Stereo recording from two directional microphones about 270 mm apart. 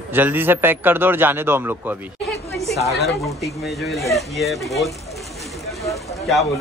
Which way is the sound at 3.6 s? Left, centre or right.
Centre.